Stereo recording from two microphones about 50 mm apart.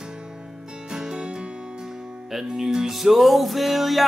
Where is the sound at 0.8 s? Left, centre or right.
Centre.